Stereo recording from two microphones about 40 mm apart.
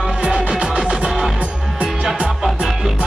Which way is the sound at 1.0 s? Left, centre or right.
Centre.